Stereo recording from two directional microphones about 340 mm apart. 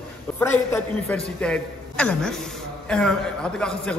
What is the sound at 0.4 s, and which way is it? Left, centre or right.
A man's voice, centre.